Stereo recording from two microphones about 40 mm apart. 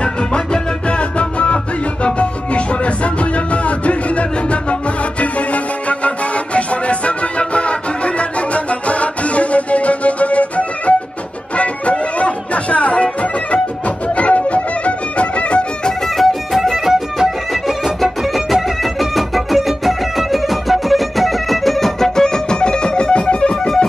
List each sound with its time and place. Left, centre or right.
0.0 s music: left
16.2 s music: centre; by 23.7 s left